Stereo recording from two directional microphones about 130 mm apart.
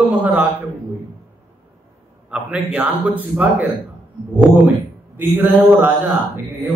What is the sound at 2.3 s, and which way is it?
Speech, 10° right (ahead or behind).